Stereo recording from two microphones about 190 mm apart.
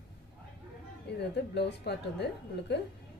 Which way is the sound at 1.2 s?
60° left (ahead or behind).